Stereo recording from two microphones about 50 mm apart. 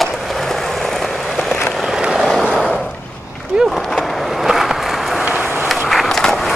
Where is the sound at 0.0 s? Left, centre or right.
Centre.